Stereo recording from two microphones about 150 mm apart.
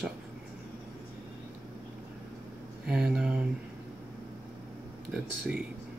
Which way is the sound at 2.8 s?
5° right (ahead or behind).